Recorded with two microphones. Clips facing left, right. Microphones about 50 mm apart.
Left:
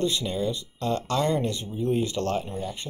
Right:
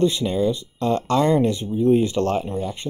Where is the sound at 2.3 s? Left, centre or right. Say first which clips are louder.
Right 5 dB; right.